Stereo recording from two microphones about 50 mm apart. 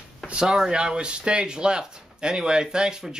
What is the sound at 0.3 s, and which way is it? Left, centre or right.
Speech, centre.